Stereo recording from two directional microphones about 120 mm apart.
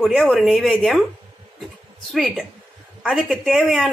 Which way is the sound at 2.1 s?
Centre (ahead or behind).